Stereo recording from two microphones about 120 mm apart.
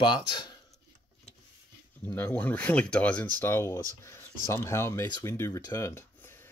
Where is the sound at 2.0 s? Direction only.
20° left (ahead or behind).